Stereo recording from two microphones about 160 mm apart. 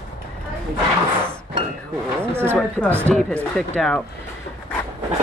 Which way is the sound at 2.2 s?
15° right (ahead or behind).